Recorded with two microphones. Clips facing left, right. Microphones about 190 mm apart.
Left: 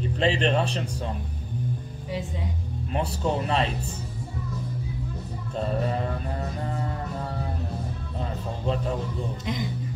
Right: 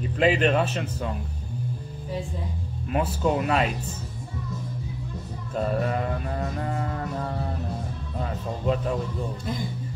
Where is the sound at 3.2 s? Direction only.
30° left (ahead or behind).